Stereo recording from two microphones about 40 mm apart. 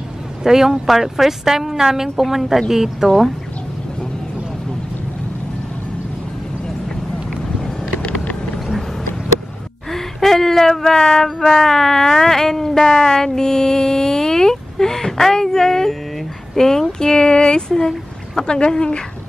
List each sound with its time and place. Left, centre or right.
0.4 s speech: centre
8.0 s vehicle: left
9.8 s a sound: centre
16.5 s speech: centre
17.0 s a sound: centre
18.5 s speech: left